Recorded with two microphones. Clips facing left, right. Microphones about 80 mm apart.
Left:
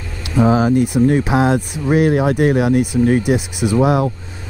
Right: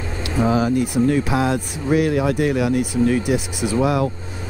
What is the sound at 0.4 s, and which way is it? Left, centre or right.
A man's voice, left.